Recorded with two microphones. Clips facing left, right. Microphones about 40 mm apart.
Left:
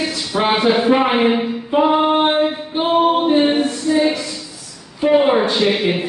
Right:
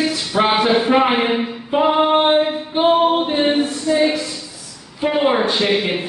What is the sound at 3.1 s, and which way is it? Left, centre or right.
Speech, centre.